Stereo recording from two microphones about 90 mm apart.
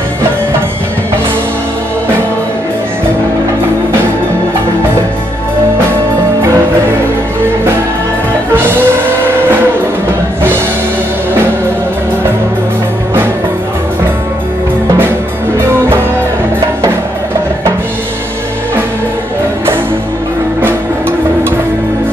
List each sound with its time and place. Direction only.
8.7 s music: 25° right (ahead or behind)
15.5 s music: 25° right (ahead or behind)